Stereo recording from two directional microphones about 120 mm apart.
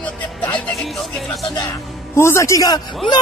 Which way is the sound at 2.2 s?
25° left (ahead or behind).